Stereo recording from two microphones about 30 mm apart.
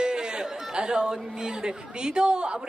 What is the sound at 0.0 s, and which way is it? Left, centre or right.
Chatter, right.